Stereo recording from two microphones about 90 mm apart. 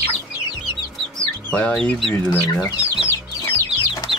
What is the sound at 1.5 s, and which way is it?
Speech, 10° left (ahead or behind).